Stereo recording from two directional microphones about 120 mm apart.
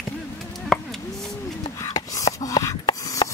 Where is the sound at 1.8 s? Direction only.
30° left (ahead or behind).